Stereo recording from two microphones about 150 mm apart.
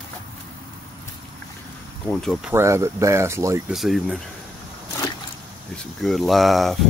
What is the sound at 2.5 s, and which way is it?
Speech, 20° right (ahead or behind).